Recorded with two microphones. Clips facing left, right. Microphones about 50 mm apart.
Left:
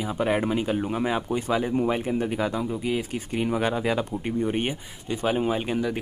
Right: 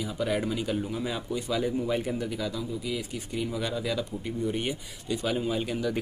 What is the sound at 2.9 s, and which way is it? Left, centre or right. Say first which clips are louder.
Speech: left 5 dB; left.